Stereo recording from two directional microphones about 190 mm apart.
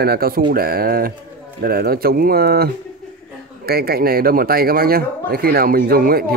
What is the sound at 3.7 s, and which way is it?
Speech, 55° right (ahead or behind).